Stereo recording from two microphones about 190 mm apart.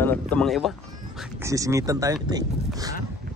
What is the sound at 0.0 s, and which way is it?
Speech, 10° left (ahead or behind).